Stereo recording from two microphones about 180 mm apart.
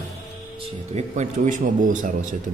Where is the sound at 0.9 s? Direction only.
40° right (ahead or behind).